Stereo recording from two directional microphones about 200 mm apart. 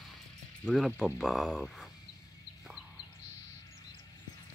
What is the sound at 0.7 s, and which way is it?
Speech, 5° left (ahead or behind).